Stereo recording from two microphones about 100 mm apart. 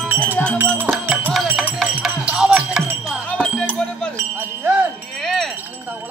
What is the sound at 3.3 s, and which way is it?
Music, 15° left (ahead or behind).